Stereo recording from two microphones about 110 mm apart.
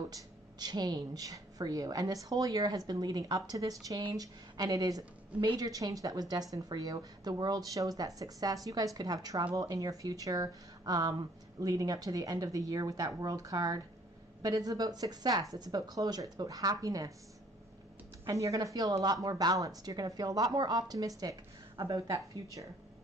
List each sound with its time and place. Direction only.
0.1 s speech: 40° right (ahead or behind)
18.2 s speech: 30° right (ahead or behind)